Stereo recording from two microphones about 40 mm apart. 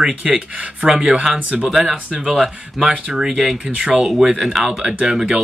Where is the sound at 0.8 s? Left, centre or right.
Centre.